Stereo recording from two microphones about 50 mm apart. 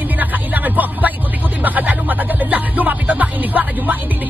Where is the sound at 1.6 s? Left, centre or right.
Right.